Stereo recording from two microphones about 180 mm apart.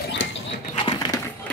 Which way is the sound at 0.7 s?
25° left (ahead or behind).